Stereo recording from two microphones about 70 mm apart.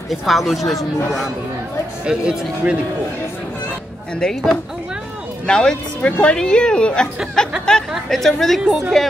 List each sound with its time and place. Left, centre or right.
0.1 s speech: centre
2.0 s speech: centre
4.2 s a woman's voice: centre
6.0 s a woman's voice: left
6.3 s a woman's voice: centre